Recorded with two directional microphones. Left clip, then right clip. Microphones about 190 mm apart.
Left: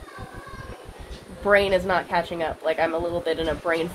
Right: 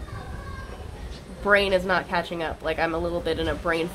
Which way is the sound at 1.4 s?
10° right (ahead or behind).